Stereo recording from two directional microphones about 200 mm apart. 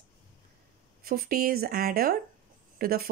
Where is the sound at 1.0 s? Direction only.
45° right (ahead or behind).